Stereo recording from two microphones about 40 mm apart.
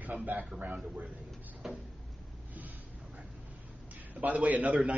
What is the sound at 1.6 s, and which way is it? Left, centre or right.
Cupboard open or close, centre.